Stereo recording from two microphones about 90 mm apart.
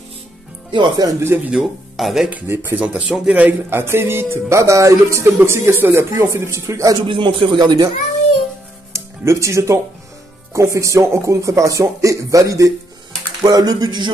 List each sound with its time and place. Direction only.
0.7 s speech: 60° right (ahead or behind)
1.0 s speech: 30° right (ahead or behind)
1.5 s speech: centre (ahead or behind)
2.4 s speech: 25° right (ahead or behind)
2.8 s speech: 10° right (ahead or behind)
3.7 s speech: 25° right (ahead or behind)
7.1 s speech: 70° right (ahead or behind)
8.9 s music: 35° right (ahead or behind)
10.5 s speech: 35° right (ahead or behind); by 14.1 s 55° right (ahead or behind)